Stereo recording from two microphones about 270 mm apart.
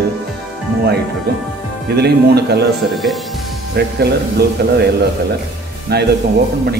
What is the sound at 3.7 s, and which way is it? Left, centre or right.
Speech, right.